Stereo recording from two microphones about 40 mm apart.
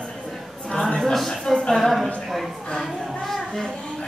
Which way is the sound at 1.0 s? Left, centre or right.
Centre.